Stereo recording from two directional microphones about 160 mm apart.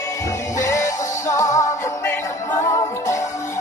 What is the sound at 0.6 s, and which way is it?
Music, 20° left (ahead or behind).